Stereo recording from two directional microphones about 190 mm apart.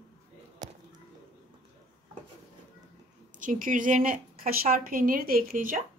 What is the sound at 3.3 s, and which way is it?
A woman's voice, 45° right (ahead or behind).